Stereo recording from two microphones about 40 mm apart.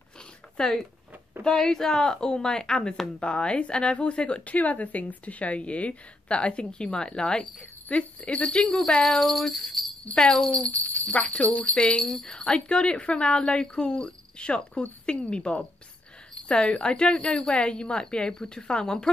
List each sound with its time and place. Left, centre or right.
0.6 s a woman's voice: centre; by 4.4 s left
4.5 s a woman's voice: left
7.9 s a woman's voice: left; by 9.3 s centre
9.3 s jingle bell: centre
10.2 s a woman's voice: left
10.5 s a woman's voice: left
10.8 s a woman's voice: left
12.0 s speech: centre
12.4 s a woman's voice: left